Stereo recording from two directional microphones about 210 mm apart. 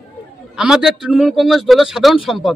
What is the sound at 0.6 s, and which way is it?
A man's voice, centre (ahead or behind).